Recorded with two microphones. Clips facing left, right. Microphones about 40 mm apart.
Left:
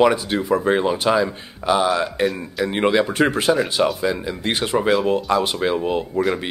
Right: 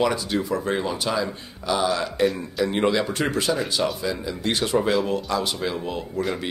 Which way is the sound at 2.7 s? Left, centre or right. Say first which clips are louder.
Left 5 dB; left.